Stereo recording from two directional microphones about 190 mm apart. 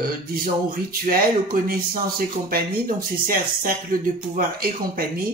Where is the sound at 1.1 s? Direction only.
50° right (ahead or behind).